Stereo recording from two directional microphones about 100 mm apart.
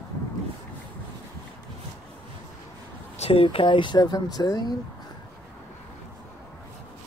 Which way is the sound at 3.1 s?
75° left (ahead or behind).